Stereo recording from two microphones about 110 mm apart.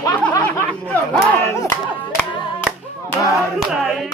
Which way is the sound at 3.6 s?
Centre (ahead or behind).